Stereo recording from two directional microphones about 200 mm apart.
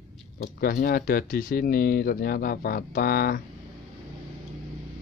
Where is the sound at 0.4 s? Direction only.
50° left (ahead or behind).